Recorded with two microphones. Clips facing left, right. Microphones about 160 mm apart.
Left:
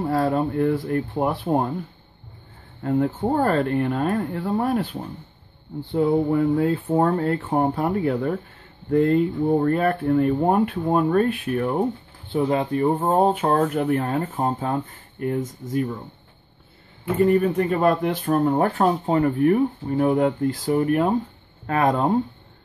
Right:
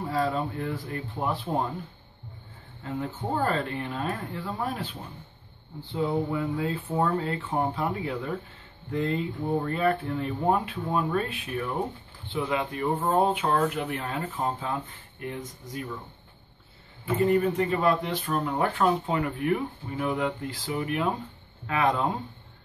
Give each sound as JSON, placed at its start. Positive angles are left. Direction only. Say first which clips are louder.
{"t": 0.1, "sound": "speech", "louder": "left 5 dB", "side_deg": 55}
{"t": 2.8, "sound": "speech", "louder": "left 11 dB", "side_deg": 55}
{"t": 5.9, "sound": "speech", "louder": "left 8 dB", "side_deg": 55}
{"t": 12.3, "sound": "speech", "louder": "left 7 dB", "side_deg": 40}
{"t": 17.6, "sound": "speech", "louder": "left 5 dB", "side_deg": 50}